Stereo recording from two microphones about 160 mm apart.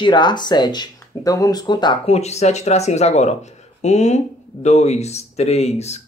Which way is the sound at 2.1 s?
45° left (ahead or behind).